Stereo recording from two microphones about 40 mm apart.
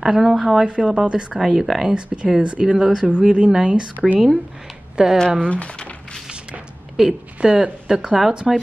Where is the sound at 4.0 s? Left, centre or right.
Centre.